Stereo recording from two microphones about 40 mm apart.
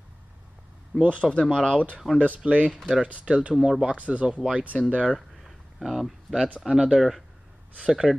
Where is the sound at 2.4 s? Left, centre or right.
Right.